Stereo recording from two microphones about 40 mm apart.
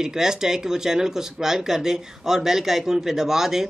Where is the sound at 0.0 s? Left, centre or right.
Centre.